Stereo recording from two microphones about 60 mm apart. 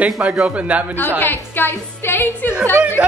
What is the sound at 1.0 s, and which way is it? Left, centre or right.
A woman's voice, left.